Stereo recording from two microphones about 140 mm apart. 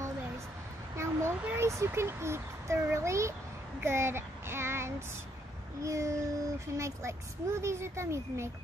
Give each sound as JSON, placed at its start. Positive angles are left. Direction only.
{"t": 0.9, "sound": "speech", "side_deg": -20}
{"t": 3.8, "sound": "child singing", "side_deg": -20}
{"t": 5.8, "sound": "speech", "side_deg": -20}